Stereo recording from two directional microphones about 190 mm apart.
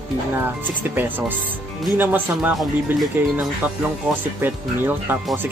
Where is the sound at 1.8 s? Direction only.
10° right (ahead or behind).